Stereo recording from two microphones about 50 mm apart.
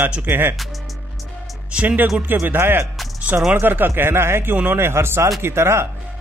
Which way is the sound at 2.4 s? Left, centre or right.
Right.